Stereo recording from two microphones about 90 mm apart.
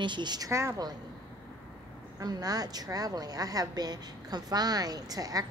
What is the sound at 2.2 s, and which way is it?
A woman's voice, 45° right (ahead or behind).